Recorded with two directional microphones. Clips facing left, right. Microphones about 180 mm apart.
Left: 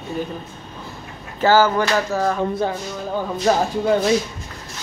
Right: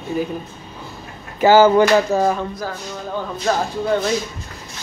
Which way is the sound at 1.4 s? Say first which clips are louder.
Right 5 dB; 20° right (ahead or behind).